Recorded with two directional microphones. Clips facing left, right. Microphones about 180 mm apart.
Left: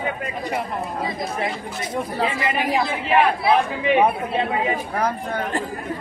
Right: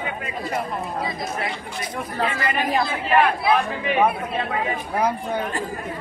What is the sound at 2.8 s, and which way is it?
Speech, 20° left (ahead or behind).